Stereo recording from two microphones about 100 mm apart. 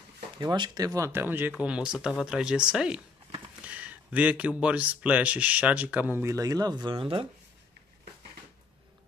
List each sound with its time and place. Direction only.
0.4 s speech: 45° right (ahead or behind); by 6.2 s 15° right (ahead or behind)
6.2 s speech: 35° right (ahead or behind); by 7.2 s 55° right (ahead or behind)